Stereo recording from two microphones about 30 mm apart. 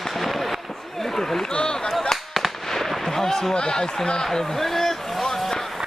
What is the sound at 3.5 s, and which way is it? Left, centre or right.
A man's voice, left.